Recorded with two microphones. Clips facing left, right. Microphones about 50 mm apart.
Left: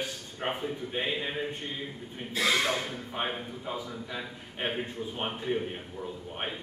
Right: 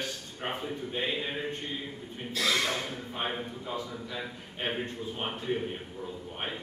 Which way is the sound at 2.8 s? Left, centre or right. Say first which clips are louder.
Left 1 dB; centre.